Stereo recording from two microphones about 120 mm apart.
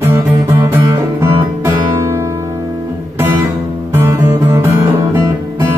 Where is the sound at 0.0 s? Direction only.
20° right (ahead or behind).